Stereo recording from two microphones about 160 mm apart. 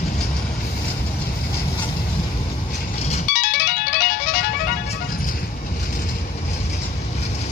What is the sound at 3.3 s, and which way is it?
Music, 60° left (ahead or behind).